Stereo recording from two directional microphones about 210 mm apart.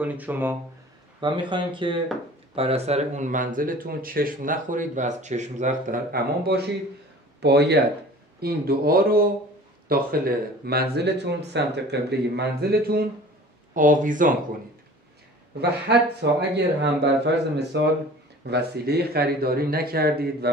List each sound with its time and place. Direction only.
0.0 s speech: 5° right (ahead or behind)
1.2 s speech: 20° right (ahead or behind); by 14.3 s 40° right (ahead or behind)
16.2 s speech: 55° right (ahead or behind)